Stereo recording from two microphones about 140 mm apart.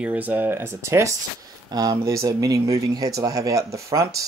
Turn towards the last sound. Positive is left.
turn(degrees=-25)  # may be behind; listen again after turning